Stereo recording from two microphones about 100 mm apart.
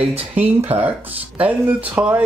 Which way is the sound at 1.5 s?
15° right (ahead or behind).